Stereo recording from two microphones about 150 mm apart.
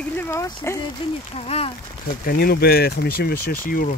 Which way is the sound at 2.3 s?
85° left.